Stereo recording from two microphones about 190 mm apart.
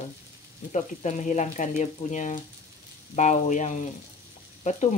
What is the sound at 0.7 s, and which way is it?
Speech, 40° left (ahead or behind).